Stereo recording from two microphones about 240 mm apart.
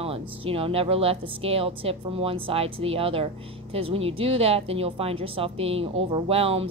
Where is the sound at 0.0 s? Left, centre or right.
Right.